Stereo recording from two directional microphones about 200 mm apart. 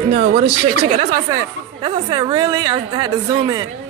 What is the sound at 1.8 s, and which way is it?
A woman's voice, 25° right (ahead or behind).